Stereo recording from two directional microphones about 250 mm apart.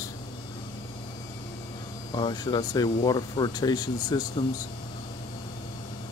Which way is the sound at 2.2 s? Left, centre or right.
Centre.